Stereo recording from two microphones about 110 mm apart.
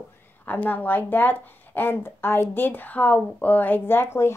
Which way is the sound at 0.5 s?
15° left (ahead or behind).